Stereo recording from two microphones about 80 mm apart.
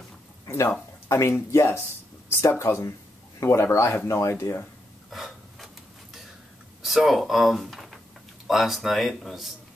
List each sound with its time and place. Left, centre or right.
0.5 s speech: left
5.1 s a sound: centre
6.8 s speech: centre